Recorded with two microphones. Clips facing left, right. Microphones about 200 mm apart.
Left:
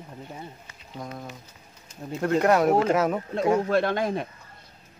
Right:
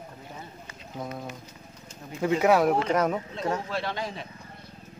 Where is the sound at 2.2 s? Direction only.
5° right (ahead or behind).